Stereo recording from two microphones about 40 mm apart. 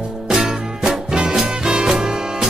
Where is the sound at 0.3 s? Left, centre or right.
Centre.